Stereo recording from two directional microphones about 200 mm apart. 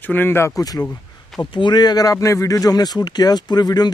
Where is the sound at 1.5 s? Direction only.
20° left (ahead or behind).